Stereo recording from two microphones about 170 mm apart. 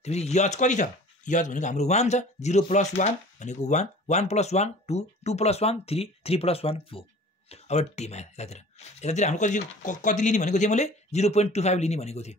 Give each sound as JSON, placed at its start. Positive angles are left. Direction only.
{"t": 0.0, "sound": "speech", "side_deg": 40}